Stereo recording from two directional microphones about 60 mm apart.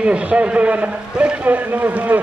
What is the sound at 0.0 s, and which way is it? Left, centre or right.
A man's voice, right.